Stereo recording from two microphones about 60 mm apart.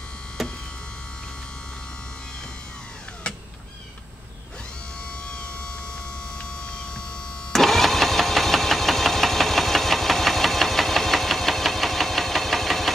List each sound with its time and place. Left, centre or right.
0.4 s hum: centre
3.3 s cat: centre
5.2 s hum: centre
7.5 s vehicle: centre